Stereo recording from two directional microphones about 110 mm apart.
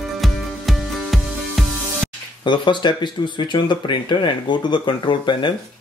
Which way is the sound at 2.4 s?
45° left (ahead or behind).